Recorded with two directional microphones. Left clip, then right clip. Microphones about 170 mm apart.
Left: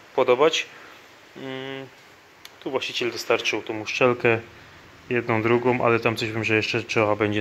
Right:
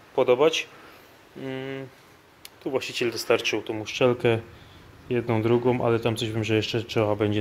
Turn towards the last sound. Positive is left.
turn(degrees=-5)  # may be behind; listen again after turning